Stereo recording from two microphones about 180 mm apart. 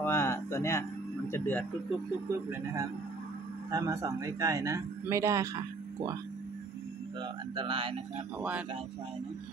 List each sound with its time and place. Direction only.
0.0 s music: 15° left (ahead or behind)
1.3 s speech: 10° left (ahead or behind)
3.7 s speech: 20° right (ahead or behind)
7.2 s speech: 30° right (ahead or behind)
8.4 s speech: 5° right (ahead or behind)